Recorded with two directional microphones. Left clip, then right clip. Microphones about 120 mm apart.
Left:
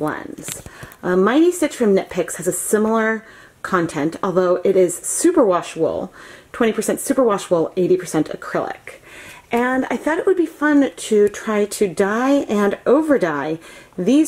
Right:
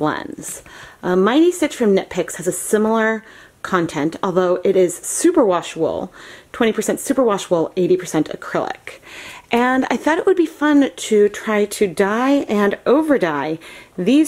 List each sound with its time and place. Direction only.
0.0 s speech: 35° right (ahead or behind)
1.0 s a woman's voice: 10° right (ahead or behind)
9.5 s speech: 25° right (ahead or behind)
10.7 s a woman's voice: 15° right (ahead or behind)